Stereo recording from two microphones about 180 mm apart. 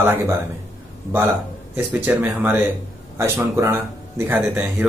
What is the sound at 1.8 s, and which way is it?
Speech, 10° right (ahead or behind).